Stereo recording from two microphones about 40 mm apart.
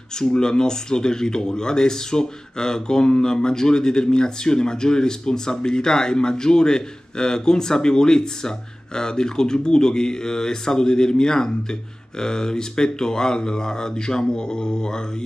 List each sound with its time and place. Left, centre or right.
0.2 s speech: centre